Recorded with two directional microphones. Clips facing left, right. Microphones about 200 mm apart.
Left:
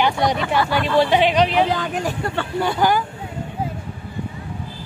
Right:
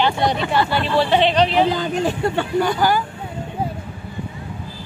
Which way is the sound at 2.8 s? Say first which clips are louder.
Left 3 dB; 20° left (ahead or behind).